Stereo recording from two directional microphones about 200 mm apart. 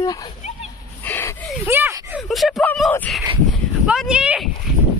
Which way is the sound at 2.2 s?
Centre (ahead or behind).